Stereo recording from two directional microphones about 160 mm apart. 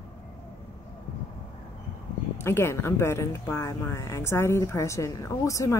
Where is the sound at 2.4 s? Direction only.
15° left (ahead or behind).